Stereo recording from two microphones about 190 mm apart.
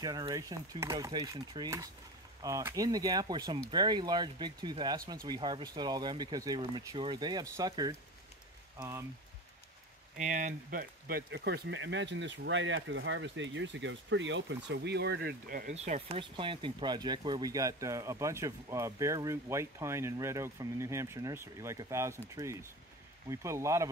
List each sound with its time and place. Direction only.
0.0 s speech: 20° right (ahead or behind)
10.1 s speech: 40° right (ahead or behind)
15.7 s speech: 35° right (ahead or behind); by 23.9 s 15° right (ahead or behind)